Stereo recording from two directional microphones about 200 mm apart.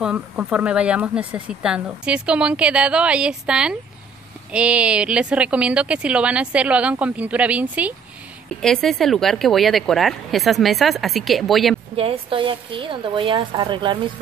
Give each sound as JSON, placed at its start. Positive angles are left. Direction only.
{"t": 0.0, "sound": "speech", "side_deg": -5}
{"t": 12.0, "sound": "a woman's voice", "side_deg": -25}